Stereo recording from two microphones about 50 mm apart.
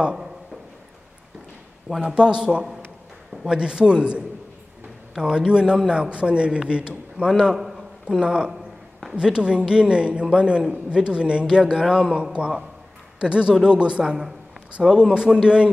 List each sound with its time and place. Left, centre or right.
0.0 s speech: centre
1.9 s a man's voice: centre
7.4 s a sound: centre
8.2 s a man's voice: centre